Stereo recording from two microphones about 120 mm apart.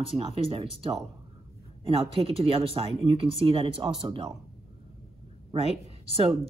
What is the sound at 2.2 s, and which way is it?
Speech, 55° right (ahead or behind).